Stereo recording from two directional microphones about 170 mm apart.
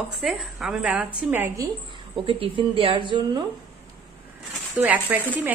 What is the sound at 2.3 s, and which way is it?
A woman's voice, 30° right (ahead or behind).